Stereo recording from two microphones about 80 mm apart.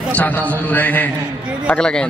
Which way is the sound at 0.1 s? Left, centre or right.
Centre.